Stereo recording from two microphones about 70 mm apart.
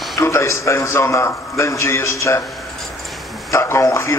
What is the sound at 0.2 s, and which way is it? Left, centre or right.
A man's voice, left.